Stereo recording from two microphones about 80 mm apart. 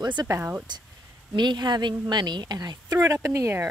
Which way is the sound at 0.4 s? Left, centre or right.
Right.